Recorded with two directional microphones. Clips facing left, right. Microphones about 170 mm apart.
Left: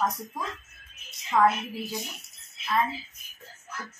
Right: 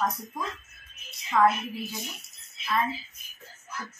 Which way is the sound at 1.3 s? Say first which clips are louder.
Even; 10° left (ahead or behind).